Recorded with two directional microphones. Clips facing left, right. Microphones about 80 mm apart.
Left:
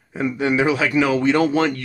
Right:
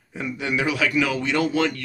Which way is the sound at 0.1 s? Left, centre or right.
Left.